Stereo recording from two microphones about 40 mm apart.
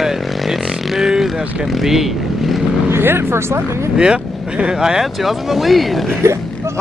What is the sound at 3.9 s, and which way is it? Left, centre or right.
Speech, right.